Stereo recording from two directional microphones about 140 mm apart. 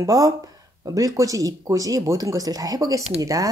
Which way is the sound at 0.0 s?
25° right (ahead or behind).